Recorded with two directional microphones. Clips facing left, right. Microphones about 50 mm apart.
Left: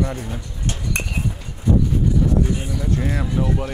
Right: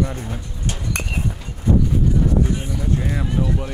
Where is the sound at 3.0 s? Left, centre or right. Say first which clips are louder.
Left 1 dB; centre.